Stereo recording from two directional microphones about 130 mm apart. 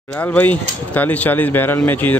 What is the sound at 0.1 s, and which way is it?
Speech, 10° left (ahead or behind).